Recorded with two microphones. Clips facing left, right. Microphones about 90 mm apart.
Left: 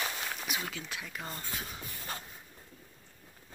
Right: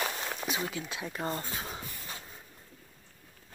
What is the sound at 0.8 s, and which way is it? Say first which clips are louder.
Speech: right 5 dB; 20° right (ahead or behind).